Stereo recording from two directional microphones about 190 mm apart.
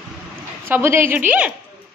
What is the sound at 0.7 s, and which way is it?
Speech, 10° right (ahead or behind).